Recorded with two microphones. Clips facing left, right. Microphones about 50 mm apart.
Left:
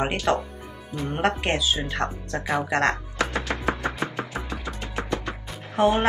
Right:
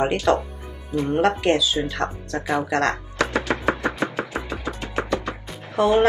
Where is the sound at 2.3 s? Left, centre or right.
Centre.